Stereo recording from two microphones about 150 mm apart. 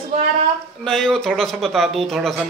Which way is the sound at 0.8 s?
5° left (ahead or behind).